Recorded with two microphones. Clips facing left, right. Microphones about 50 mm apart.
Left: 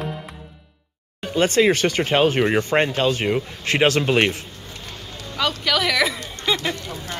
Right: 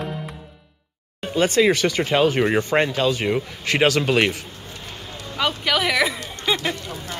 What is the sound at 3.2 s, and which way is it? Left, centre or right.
A man's voice, centre.